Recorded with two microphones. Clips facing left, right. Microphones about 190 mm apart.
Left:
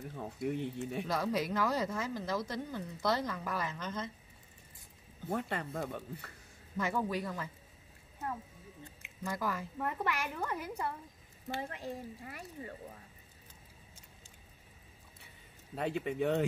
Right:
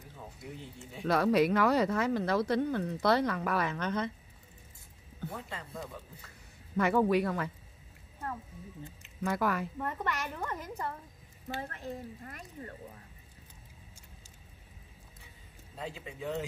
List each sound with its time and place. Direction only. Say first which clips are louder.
0.1 s speech: left 9 dB; 60° left (ahead or behind)
1.0 s a woman's voice: right 10 dB; 65° right (ahead or behind)
5.3 s speech: left 10 dB; 65° left (ahead or behind)
6.8 s a man's voice: right 8 dB; 65° right (ahead or behind)
9.2 s a man's voice: right 6 dB; 65° right (ahead or behind)
9.8 s a woman's voice: even; 10° left (ahead or behind)
15.7 s speech: left 7 dB; 65° left (ahead or behind)